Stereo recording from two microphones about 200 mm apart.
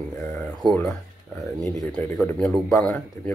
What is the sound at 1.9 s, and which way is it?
Speech, 5° left (ahead or behind).